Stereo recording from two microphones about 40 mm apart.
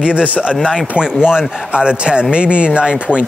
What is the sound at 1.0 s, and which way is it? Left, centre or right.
Speech, centre.